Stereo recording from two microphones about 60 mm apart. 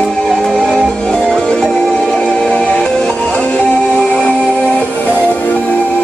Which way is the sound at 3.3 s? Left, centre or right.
Left.